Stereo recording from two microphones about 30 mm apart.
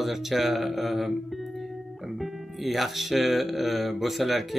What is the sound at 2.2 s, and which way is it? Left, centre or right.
Speech, centre.